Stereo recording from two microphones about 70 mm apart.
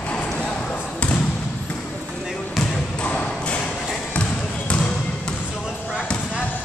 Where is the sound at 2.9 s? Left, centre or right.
Centre.